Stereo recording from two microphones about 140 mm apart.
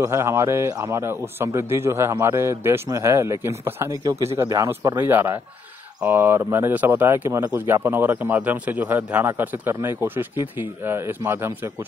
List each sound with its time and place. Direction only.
0.0 s a man's voice: 20° right (ahead or behind)